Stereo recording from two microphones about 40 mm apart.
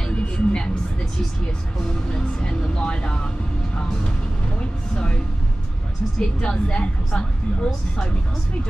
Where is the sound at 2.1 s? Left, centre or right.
Left.